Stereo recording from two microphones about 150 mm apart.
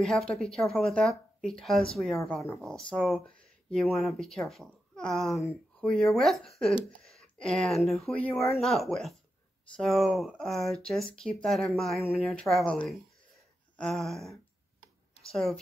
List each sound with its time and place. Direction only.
0.0 s speech: 5° left (ahead or behind)
8.3 s speech: 20° left (ahead or behind)
8.5 s speech: centre (ahead or behind)